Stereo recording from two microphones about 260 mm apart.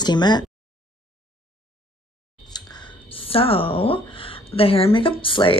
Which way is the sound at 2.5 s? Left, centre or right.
Centre.